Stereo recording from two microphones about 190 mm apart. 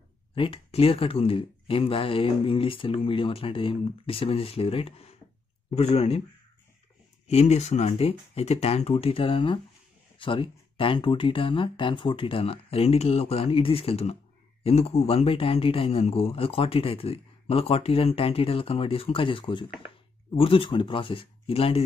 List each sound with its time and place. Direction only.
0.3 s a man's voice: 30° left (ahead or behind)
7.2 s a man's voice: 35° left (ahead or behind)